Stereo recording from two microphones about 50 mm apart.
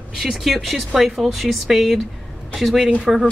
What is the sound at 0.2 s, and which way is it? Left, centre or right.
Speech, centre.